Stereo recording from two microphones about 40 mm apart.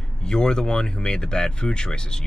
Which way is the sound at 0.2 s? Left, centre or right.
Centre.